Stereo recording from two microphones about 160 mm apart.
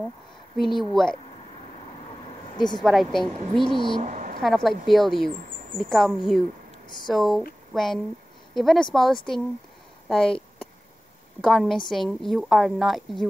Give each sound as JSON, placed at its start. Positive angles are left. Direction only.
{"t": 0.7, "sound": "a woman's voice", "side_deg": 0}
{"t": 2.5, "sound": "speech", "side_deg": 30}
{"t": 2.8, "sound": "a woman's voice", "side_deg": 0}
{"t": 3.6, "sound": "speech", "side_deg": 30}
{"t": 4.0, "sound": "a sound", "side_deg": -55}
{"t": 4.4, "sound": "a woman's voice", "side_deg": 0}
{"t": 11.4, "sound": "a woman's voice", "side_deg": 0}